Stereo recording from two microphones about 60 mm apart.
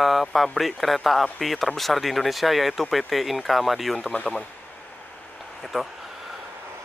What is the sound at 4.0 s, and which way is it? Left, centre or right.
Speech, left.